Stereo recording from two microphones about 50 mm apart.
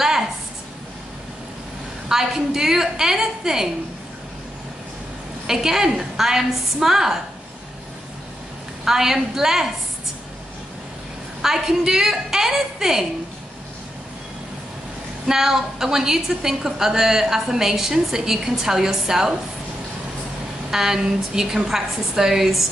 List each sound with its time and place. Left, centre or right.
2.0 s a woman's voice: centre
5.5 s a woman's voice: centre
8.8 s a woman's voice: centre
11.4 s a woman's voice: centre
15.2 s a woman's voice: centre
20.7 s a woman's voice: centre